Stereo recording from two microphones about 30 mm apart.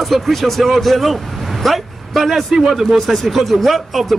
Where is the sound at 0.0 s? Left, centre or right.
Centre.